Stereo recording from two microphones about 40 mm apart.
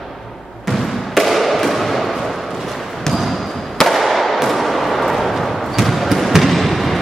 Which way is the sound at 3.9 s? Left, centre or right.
Centre.